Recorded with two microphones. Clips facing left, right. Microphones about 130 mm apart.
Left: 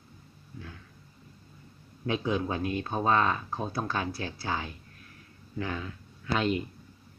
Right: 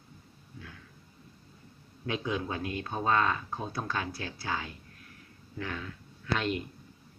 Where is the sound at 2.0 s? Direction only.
25° left (ahead or behind).